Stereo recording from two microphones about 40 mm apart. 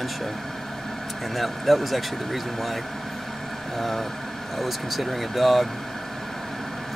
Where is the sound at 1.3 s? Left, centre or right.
Centre.